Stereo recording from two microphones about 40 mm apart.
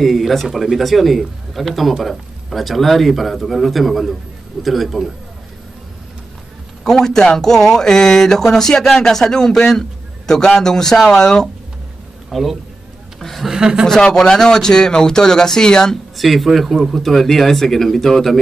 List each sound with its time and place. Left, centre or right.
0.0 s a man's voice: centre
6.8 s speech: centre
12.3 s speech: centre
13.2 s a sound: centre
13.5 s speech: centre
13.8 s speech: centre
16.2 s a man's voice: centre